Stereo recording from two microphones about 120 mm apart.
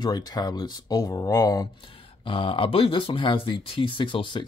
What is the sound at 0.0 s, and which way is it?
Speech, 35° left (ahead or behind).